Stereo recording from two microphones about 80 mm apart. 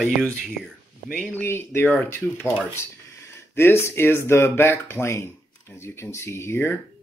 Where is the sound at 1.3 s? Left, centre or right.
Left.